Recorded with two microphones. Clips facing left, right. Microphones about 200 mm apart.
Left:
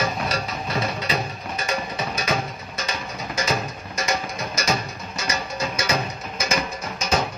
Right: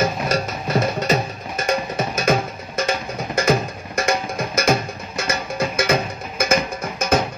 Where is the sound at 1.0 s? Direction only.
50° right (ahead or behind).